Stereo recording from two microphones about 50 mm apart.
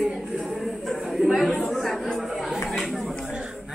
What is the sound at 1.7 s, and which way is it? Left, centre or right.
Chatter, centre.